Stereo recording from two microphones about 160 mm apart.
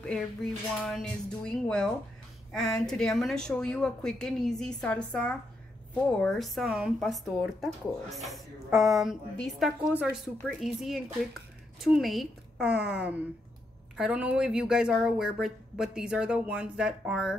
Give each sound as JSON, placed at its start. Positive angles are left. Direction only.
{"t": 0.0, "sound": "speech", "side_deg": 5}